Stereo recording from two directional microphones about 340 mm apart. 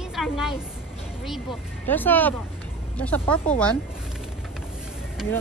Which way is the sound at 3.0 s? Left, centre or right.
Centre.